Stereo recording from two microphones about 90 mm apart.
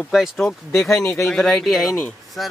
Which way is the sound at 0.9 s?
30° left (ahead or behind).